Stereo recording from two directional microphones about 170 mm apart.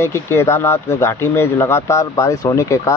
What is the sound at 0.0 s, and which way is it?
Speech, 15° left (ahead or behind).